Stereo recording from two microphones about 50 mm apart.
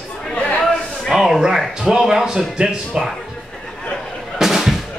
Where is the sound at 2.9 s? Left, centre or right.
Centre.